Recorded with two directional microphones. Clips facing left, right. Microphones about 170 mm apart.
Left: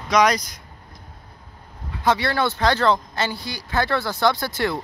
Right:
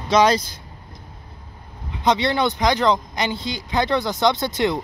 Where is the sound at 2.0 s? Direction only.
20° right (ahead or behind).